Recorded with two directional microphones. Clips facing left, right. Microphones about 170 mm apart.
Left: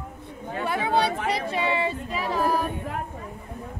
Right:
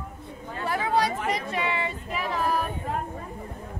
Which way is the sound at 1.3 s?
30° left (ahead or behind).